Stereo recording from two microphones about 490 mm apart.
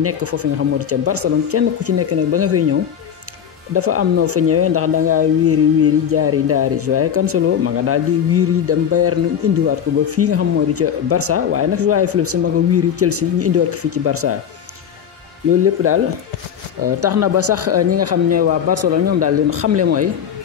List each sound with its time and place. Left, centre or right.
0.0 s speech: right
3.7 s speech: right
15.6 s speech: right